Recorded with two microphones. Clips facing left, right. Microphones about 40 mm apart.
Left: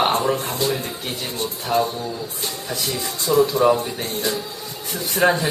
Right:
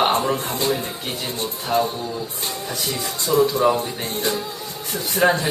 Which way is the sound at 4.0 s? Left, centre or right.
Right.